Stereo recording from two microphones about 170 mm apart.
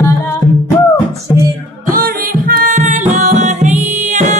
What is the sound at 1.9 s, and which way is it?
Music, 60° right (ahead or behind).